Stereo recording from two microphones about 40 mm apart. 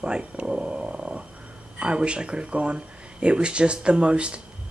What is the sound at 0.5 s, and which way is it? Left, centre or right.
Dog, centre.